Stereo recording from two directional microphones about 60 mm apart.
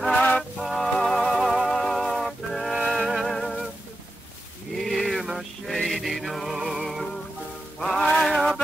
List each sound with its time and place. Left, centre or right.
0.1 s music: left
0.4 s music: centre
1.4 s music: centre
1.7 s music: centre
4.8 s a sound: centre
5.7 s music: centre